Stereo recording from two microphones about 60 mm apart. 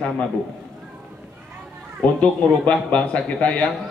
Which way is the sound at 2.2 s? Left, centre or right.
Left.